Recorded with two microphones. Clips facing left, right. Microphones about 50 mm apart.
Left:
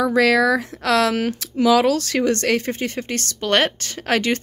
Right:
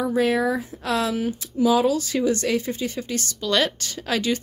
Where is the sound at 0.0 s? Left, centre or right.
Left.